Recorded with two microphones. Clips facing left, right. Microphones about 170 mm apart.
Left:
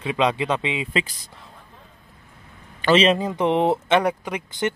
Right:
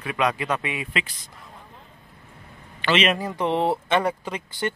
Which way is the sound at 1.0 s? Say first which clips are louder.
Left 4 dB; 35° left (ahead or behind).